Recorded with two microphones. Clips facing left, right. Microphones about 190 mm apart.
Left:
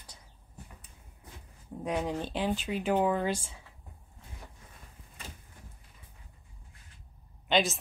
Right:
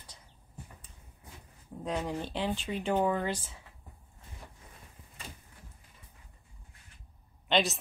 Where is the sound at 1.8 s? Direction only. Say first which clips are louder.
Left 2 dB; 15° left (ahead or behind).